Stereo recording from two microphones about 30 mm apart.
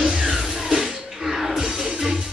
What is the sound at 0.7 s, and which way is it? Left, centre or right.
Music, centre.